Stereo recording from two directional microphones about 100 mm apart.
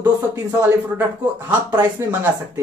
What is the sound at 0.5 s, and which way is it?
Speech, 20° right (ahead or behind).